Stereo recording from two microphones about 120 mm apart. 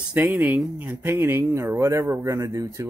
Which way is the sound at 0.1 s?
15° right (ahead or behind).